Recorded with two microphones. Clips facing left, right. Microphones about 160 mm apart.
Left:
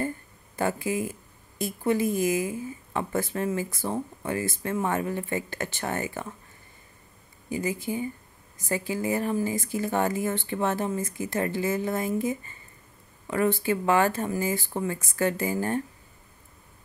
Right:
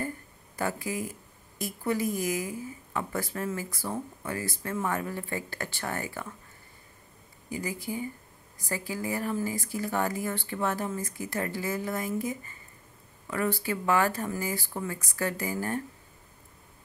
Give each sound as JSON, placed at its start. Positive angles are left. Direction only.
{"t": 0.6, "sound": "speech", "side_deg": 25}
{"t": 7.4, "sound": "speech", "side_deg": 20}